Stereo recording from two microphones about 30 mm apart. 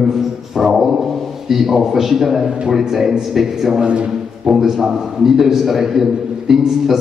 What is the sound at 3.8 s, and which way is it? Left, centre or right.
Speech, right.